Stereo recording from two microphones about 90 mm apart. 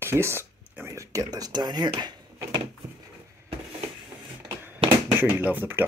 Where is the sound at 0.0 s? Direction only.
30° right (ahead or behind); by 2.1 s 50° right (ahead or behind).